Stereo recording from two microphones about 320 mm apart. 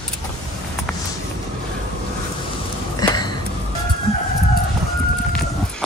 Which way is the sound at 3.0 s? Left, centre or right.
Centre.